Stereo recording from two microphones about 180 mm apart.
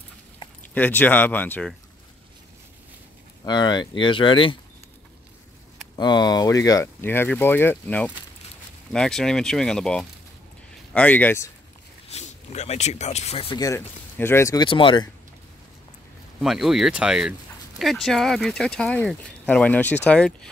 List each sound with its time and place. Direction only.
0.7 s speech: 10° left (ahead or behind)
3.4 s speech: 25° left (ahead or behind)
5.9 s speech: 25° left (ahead or behind)
12.1 s speech: 40° left (ahead or behind)
13.6 s speech: 15° left (ahead or behind)
16.3 s speech: centre (ahead or behind)